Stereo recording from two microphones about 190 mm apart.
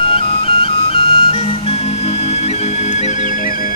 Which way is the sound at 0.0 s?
30° left (ahead or behind).